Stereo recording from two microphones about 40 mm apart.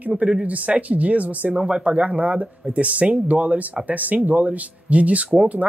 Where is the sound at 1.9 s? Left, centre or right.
Right.